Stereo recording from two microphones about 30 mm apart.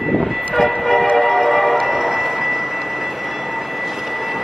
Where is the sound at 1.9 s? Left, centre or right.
Centre.